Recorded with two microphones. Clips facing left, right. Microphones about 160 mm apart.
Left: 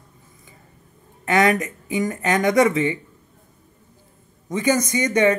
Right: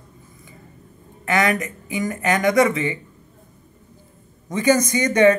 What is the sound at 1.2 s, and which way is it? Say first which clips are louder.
Speech: left 2 dB; 35° left (ahead or behind).